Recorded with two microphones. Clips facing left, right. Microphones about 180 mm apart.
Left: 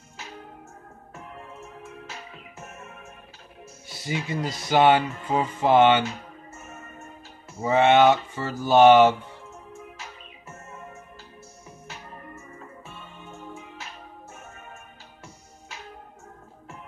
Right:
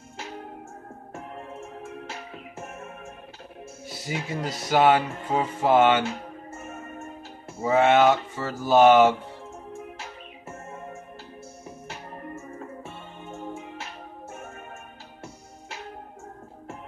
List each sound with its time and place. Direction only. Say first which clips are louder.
4.0 s speech: left 2 dB; centre (ahead or behind)
6.5 s music: right 6 dB; 55° right (ahead or behind)
7.6 s speech: left 1 dB; centre (ahead or behind)
12.4 s music: right 5 dB; 50° right (ahead or behind)